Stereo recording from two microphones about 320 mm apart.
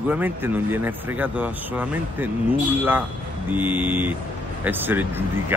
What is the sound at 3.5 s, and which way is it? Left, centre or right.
A man's voice, centre.